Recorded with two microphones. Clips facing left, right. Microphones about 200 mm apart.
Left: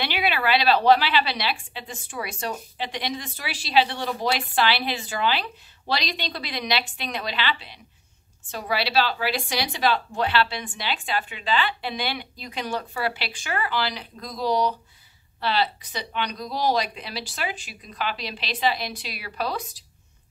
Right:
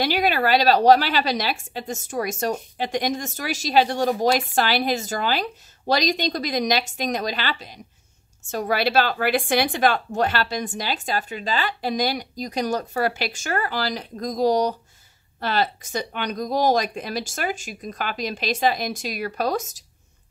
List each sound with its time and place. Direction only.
0.0 s a woman's voice: 40° right (ahead or behind)